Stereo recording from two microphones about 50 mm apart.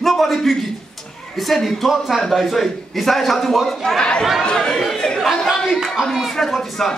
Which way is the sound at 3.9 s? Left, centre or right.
Centre.